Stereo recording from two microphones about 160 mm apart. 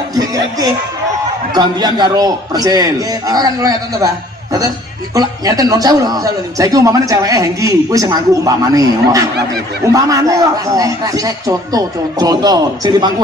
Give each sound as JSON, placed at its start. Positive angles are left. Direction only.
{"t": 0.1, "sound": "a man's voice", "side_deg": -25}